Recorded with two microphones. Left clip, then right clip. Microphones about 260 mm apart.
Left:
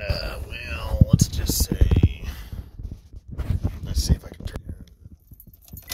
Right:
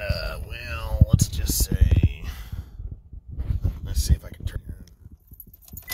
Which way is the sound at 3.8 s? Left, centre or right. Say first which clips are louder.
Left 3 dB; centre.